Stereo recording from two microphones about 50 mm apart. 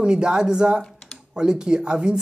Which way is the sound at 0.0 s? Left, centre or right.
Centre.